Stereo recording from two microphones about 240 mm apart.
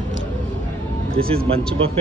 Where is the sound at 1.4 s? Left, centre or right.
Right.